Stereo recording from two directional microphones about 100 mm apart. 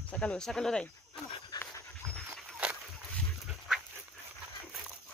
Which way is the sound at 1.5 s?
50° left (ahead or behind).